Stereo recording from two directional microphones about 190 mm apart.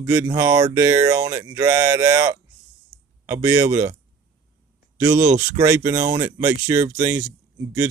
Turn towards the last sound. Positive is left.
turn(degrees=-10)  # may be behind; listen again after turning